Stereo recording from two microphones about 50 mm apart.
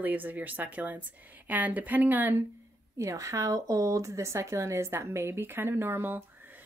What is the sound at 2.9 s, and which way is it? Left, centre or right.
Speech, right.